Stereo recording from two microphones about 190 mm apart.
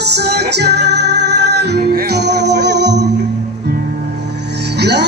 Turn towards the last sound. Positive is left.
turn(degrees=-60)  # may be behind; listen again after turning